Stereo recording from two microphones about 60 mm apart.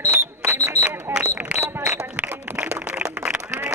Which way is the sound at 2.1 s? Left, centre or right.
Right.